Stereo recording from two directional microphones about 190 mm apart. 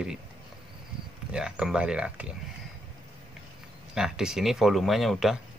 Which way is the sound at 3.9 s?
5° right (ahead or behind).